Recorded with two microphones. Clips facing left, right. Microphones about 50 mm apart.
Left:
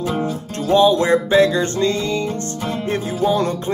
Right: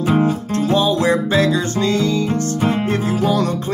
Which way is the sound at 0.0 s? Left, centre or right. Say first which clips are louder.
Right 5 dB; right.